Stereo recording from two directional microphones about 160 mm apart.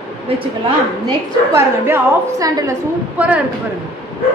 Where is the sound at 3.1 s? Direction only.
10° right (ahead or behind).